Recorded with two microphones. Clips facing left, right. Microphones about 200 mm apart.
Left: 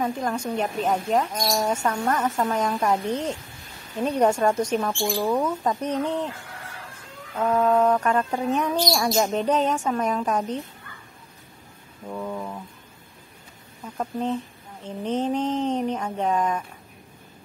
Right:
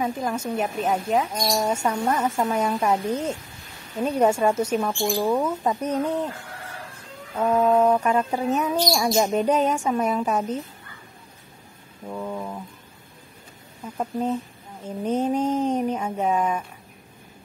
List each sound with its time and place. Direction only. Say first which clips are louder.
0.0 s speech: even; 5° right (ahead or behind)
1.3 s speech: right 1 dB; 20° right (ahead or behind)
1.7 s speech: right 1 dB; 10° right (ahead or behind)
7.3 s speech: right 1 dB; 10° right (ahead or behind)
12.1 s a sound: even; 5° right (ahead or behind)
13.9 s speech: right 1 dB; 10° right (ahead or behind)